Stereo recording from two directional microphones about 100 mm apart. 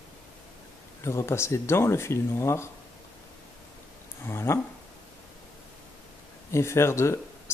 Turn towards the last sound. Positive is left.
turn(degrees=25)  # may be behind; listen again after turning